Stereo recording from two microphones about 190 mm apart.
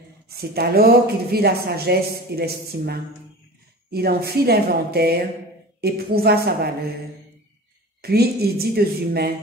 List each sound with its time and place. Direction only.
0.3 s speech: 55° right (ahead or behind)
8.0 s speech: 55° right (ahead or behind)